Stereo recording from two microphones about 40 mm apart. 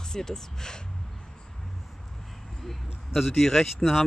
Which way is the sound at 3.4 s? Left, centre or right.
Centre.